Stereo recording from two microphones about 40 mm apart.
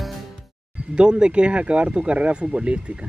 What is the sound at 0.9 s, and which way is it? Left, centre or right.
Speech, right.